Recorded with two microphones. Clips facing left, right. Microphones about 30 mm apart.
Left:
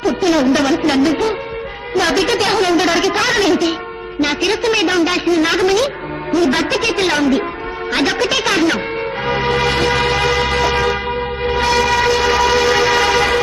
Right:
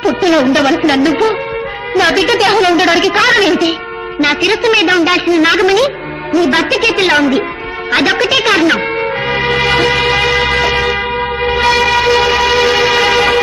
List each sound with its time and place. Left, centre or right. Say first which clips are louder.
0.0 s a woman's voice: right 4 dB; right
9.3 s music: right 3 dB; right
11.4 s train: right 4 dB; right